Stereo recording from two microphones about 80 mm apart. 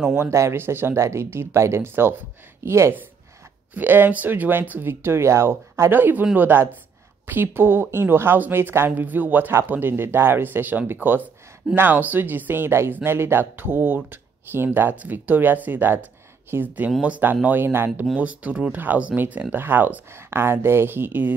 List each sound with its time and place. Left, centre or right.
0.0 s a woman's voice: right